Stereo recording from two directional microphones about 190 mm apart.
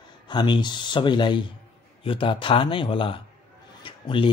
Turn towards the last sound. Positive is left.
turn(degrees=25)  # may be behind; listen again after turning